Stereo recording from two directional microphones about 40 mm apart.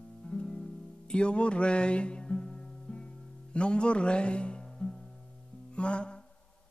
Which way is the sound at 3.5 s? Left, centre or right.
Left.